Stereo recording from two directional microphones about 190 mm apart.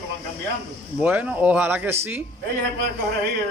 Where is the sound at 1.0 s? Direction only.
5° right (ahead or behind).